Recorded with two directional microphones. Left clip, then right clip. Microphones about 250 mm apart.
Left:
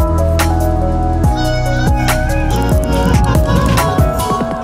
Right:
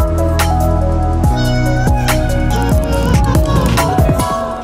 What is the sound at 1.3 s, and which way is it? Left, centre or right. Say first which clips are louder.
Music: even; centre.